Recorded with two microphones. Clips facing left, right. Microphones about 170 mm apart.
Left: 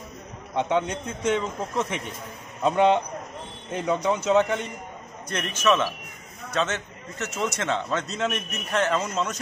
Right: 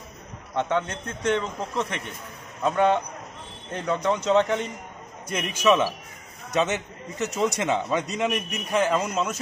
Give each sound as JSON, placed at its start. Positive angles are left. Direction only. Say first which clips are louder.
{"t": 0.6, "sound": "a man's voice", "louder": "left 1 dB", "side_deg": 15}
{"t": 5.3, "sound": "a man's voice", "louder": "right 2 dB", "side_deg": -10}